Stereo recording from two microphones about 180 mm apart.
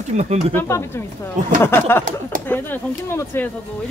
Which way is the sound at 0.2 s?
40° right (ahead or behind).